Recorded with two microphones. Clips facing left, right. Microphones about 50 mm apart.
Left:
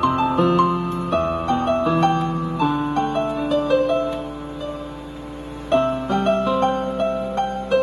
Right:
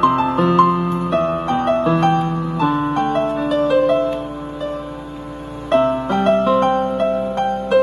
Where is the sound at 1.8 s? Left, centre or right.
Right.